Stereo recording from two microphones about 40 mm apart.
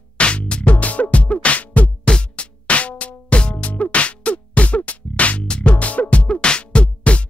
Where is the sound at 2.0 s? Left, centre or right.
Left.